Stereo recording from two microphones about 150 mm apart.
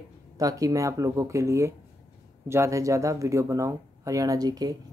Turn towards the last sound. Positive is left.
turn(degrees=-25)  # may be behind; listen again after turning